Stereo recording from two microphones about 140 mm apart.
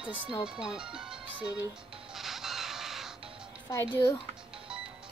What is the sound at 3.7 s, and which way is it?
Speech, 20° left (ahead or behind).